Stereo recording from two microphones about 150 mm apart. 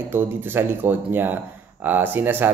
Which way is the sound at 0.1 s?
15° right (ahead or behind).